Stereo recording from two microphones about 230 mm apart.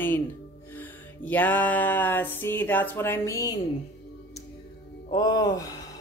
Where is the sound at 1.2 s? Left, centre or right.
Centre.